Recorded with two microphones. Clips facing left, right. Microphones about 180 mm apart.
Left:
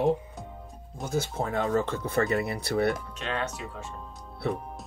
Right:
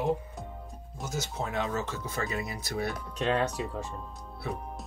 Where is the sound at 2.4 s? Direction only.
65° left (ahead or behind).